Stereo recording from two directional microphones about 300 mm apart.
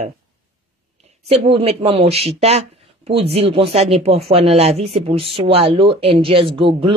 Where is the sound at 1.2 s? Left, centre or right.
Centre.